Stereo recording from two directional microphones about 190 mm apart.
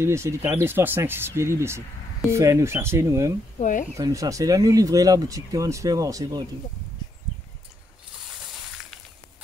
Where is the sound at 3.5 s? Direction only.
40° left (ahead or behind).